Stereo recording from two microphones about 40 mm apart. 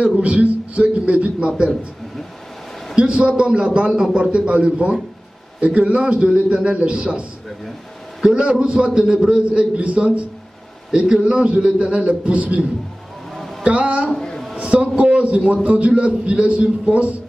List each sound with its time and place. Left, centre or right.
0.0 s a man's voice: right
3.0 s a man's voice: right
3.9 s a man's voice: centre
4.2 s a man's voice: right
8.3 s a man's voice: right
9.3 s a man's voice: right
10.9 s a man's voice: centre
13.7 s a man's voice: right